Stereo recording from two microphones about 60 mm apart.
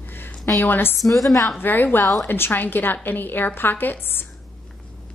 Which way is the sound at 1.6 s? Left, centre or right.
Left.